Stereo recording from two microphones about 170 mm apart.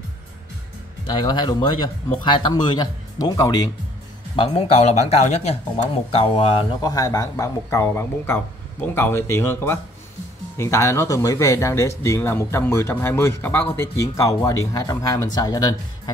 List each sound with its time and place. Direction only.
1.1 s a man's voice: 25° left (ahead or behind)
4.4 s a man's voice: 35° left (ahead or behind)